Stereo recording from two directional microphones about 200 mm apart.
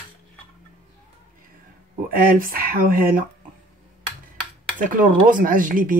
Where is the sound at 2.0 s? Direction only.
45° right (ahead or behind).